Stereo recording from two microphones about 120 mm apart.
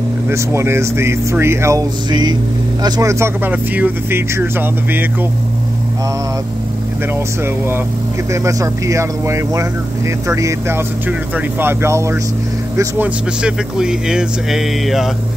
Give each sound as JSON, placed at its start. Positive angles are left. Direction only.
{"t": 0.3, "sound": "speech", "side_deg": -20}
{"t": 2.0, "sound": "vehicle", "side_deg": -40}
{"t": 2.8, "sound": "speech", "side_deg": -25}
{"t": 7.4, "sound": "speech", "side_deg": -20}
{"t": 11.1, "sound": "speech", "side_deg": -10}
{"t": 11.8, "sound": "speech", "side_deg": -20}
{"t": 13.0, "sound": "speech", "side_deg": -10}